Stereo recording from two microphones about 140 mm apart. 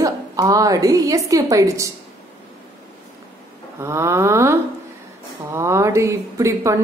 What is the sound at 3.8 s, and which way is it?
Speech, 20° right (ahead or behind).